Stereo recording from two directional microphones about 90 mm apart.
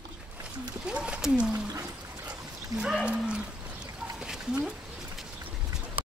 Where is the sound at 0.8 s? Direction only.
10° right (ahead or behind).